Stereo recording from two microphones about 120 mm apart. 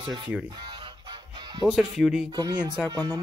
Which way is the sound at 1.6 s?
Centre (ahead or behind).